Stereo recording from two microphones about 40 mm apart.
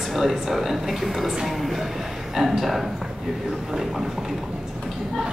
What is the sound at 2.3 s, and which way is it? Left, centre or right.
Speech, centre.